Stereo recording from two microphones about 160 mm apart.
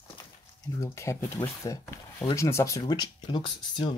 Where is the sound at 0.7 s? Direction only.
15° left (ahead or behind).